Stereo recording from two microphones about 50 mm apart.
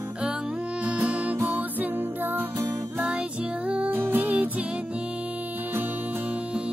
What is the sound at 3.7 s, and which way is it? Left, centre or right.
Music, right.